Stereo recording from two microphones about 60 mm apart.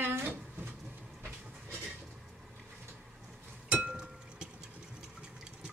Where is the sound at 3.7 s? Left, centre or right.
Centre.